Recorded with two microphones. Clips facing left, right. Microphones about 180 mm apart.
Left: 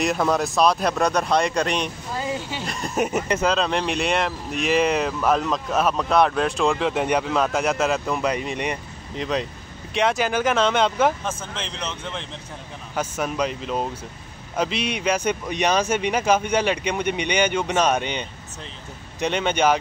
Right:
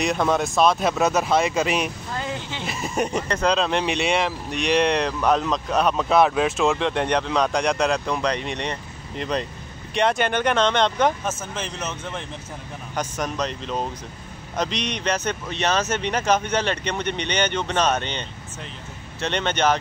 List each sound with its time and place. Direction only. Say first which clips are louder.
0.0 s speech: even; centre (ahead or behind)
2.1 s speech: left 4 dB; 5° left (ahead or behind)
11.2 s speech: right 1 dB; 5° right (ahead or behind)
12.9 s speech: left 2 dB; 5° left (ahead or behind)